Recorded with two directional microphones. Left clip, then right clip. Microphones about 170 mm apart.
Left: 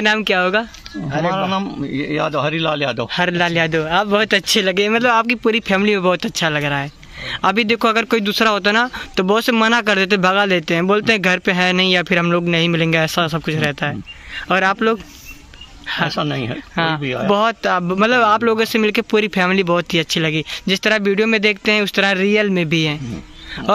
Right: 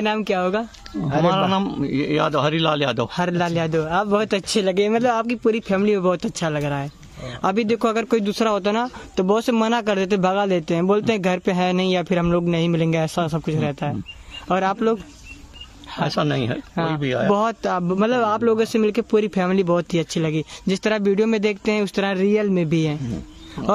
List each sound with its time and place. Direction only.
0.0 s speech: centre (ahead or behind)
1.3 s a man's voice: 25° right (ahead or behind)
3.1 s speech: 5° right (ahead or behind)
16.2 s a man's voice: 25° right (ahead or behind)
16.7 s speech: centre (ahead or behind)